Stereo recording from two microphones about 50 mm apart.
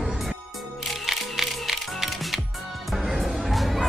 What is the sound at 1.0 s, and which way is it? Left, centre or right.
Music, centre.